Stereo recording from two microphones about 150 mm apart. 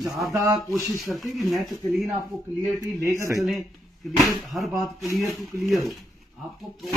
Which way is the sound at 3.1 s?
20° right (ahead or behind).